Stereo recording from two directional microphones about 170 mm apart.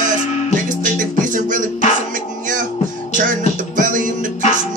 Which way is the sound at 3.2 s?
50° right (ahead or behind).